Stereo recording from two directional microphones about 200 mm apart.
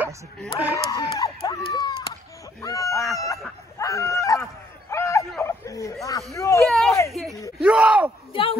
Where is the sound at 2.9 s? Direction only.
Centre (ahead or behind).